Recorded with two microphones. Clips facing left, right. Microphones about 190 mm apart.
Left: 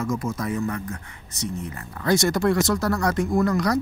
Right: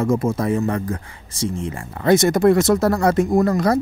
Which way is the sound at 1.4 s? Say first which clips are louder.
Right 6 dB; 90° right.